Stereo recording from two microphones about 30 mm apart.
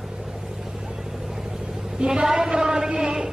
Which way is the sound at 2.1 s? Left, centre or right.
Centre.